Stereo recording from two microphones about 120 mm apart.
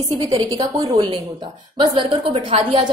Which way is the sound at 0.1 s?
30° right (ahead or behind).